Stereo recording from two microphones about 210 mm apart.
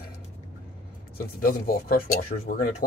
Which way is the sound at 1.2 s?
45° left (ahead or behind).